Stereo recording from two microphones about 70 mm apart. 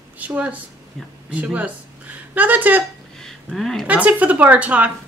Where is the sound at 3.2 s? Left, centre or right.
Centre.